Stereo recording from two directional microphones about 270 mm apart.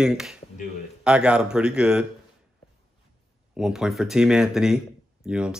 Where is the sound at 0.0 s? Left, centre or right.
Centre.